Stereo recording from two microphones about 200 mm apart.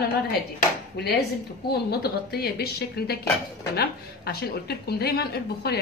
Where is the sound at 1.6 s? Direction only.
50° left (ahead or behind).